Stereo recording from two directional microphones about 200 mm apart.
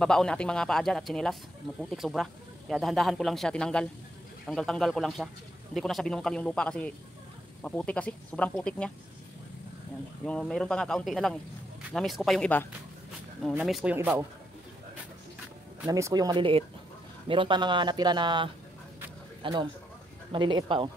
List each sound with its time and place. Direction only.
0.0 s speech: 5° left (ahead or behind)
10.2 s speech: 5° left (ahead or behind); by 14.2 s 10° right (ahead or behind)
15.8 s a man's voice: 15° right (ahead or behind)